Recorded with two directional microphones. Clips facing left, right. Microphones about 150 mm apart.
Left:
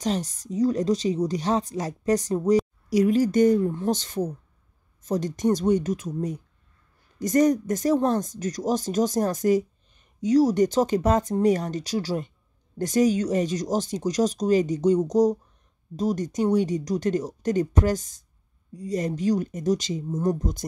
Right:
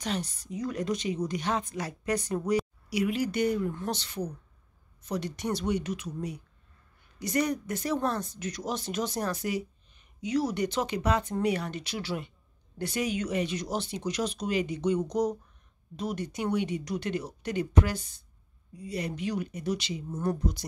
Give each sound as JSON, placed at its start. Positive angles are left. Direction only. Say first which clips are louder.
{"t": 0.0, "sound": "a woman's voice", "louder": "left 6 dB", "side_deg": 40}